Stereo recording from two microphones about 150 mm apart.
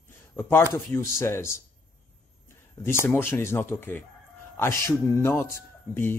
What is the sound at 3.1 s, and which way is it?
Speech, 15° left (ahead or behind).